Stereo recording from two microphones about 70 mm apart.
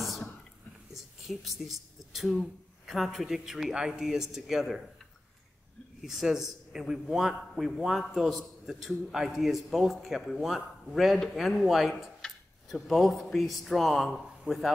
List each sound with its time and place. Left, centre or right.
0.9 s speech: centre
6.0 s a man's voice: centre